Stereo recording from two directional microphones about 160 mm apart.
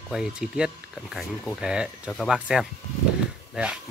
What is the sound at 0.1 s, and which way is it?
Speech, 5° right (ahead or behind).